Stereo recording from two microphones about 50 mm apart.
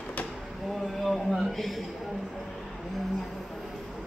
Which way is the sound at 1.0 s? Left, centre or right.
Centre.